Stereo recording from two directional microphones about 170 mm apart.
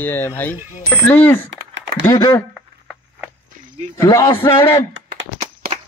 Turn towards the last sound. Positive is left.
turn(degrees=-90)